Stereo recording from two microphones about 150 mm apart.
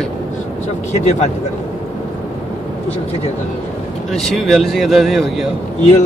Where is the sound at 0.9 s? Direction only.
50° left (ahead or behind).